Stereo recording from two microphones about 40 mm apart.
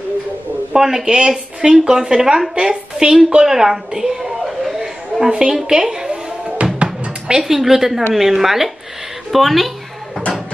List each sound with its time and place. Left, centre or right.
0.7 s a woman's voice: centre
3.3 s a sound: centre
5.3 s a woman's voice: right
6.6 s drum: right
7.3 s a woman's voice: centre